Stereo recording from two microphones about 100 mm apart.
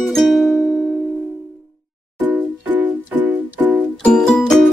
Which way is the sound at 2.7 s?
15° right (ahead or behind).